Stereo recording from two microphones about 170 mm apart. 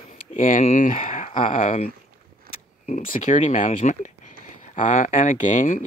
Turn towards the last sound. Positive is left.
turn(degrees=50)  # may be behind; listen again after turning